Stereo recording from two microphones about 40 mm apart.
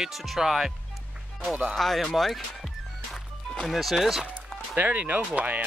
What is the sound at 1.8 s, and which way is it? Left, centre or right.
Speech, centre.